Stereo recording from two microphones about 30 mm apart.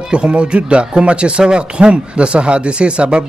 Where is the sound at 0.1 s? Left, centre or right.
Right.